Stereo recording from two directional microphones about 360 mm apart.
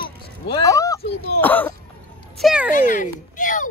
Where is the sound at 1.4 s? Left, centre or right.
Centre.